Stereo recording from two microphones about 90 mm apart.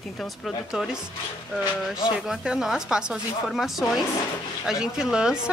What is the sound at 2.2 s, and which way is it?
Speech, 5° right (ahead or behind).